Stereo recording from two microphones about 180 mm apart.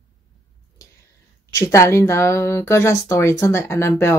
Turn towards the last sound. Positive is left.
turn(degrees=15)  # may be behind; listen again after turning